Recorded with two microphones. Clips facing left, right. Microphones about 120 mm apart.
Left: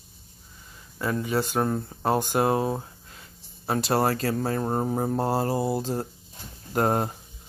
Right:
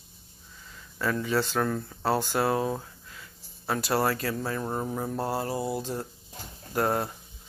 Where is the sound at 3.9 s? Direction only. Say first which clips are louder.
Left 3 dB; 40° left (ahead or behind).